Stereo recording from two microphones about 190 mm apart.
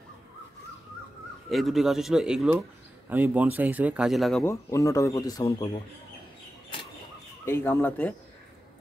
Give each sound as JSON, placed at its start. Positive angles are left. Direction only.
{"t": 1.5, "sound": "speech", "side_deg": 0}
{"t": 4.5, "sound": "speech", "side_deg": 15}
{"t": 7.4, "sound": "speech", "side_deg": 10}